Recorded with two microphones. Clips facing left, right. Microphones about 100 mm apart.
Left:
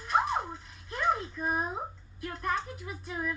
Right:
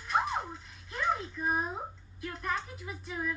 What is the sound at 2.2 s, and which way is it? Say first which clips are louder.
Speech: left 3 dB; 45° left (ahead or behind).